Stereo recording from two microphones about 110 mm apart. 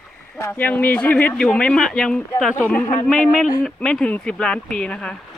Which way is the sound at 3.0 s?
5° left (ahead or behind).